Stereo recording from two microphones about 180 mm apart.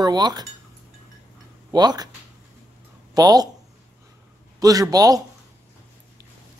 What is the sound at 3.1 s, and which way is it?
Speech, 20° right (ahead or behind).